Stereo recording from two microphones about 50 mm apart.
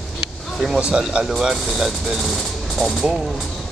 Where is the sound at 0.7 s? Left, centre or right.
Centre.